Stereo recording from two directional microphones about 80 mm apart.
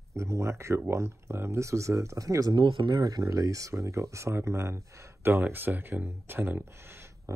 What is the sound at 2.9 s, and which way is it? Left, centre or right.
Speech, right.